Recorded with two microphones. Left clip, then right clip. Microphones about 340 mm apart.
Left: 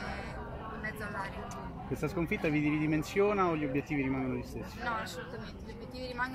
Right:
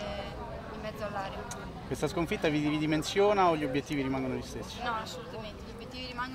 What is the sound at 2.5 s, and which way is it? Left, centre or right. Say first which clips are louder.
Speech: right 1 dB; right.